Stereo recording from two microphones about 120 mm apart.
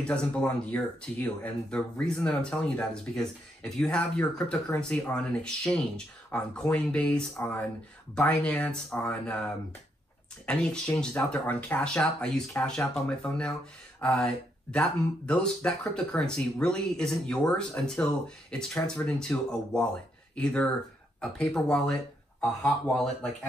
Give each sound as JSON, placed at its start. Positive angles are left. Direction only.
{"t": 0.0, "sound": "speech", "side_deg": 10}
{"t": 8.3, "sound": "speech", "side_deg": 10}